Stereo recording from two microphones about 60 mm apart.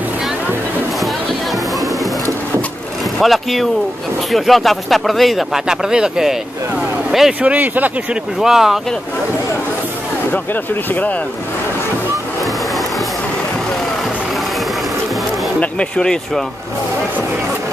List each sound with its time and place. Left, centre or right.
1.0 s a sound: centre
3.2 s speech: centre
7.1 s a sound: centre
7.4 s speech: right
8.1 s speech: centre
10.3 s speech: left
15.6 s speech: centre